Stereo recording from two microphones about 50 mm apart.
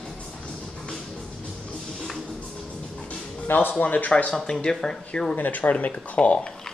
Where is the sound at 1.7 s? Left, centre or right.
Centre.